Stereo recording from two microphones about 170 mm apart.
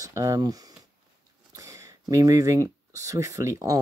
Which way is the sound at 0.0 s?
20° right (ahead or behind).